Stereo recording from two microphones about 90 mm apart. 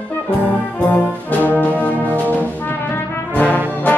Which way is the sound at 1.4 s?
20° left (ahead or behind).